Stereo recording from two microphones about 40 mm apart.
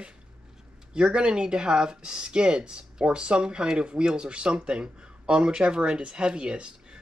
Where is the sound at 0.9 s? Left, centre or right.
Right.